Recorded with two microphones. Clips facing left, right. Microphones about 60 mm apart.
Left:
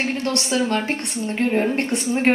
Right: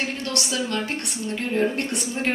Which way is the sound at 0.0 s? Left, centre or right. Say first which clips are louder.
Left 4 dB; left.